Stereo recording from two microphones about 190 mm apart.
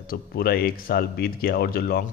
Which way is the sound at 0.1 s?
55° left (ahead or behind).